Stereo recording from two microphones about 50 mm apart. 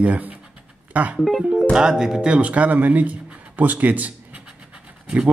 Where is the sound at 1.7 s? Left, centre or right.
Centre; by 4.4 s right.